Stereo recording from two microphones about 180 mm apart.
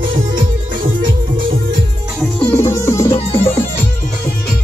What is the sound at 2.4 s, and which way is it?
Music, 15° left (ahead or behind).